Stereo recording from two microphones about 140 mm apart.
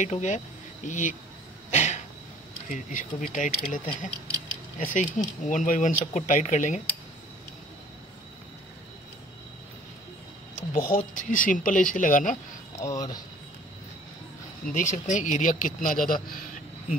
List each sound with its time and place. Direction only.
0.0 s speech: 60° left (ahead or behind)
1.7 s cough: 55° left (ahead or behind)
2.7 s speech: 65° left (ahead or behind)
10.7 s a man's voice: 75° left (ahead or behind)
12.8 s speech: 25° left (ahead or behind)
14.7 s a man's voice: 60° left (ahead or behind); by 16.4 s 85° left